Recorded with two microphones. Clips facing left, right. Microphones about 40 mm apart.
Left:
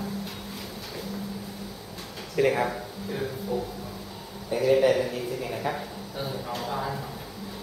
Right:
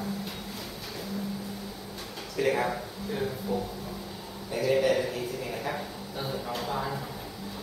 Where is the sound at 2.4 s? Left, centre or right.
Centre.